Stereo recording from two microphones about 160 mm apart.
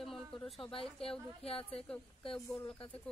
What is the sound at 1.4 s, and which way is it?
Speech, 35° left (ahead or behind).